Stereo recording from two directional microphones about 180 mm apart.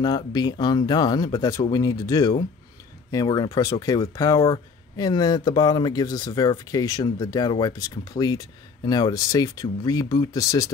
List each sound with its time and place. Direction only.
0.0 s speech: 20° left (ahead or behind)